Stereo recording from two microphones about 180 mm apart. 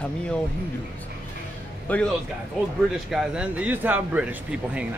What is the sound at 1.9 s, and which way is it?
Speech, 5° left (ahead or behind).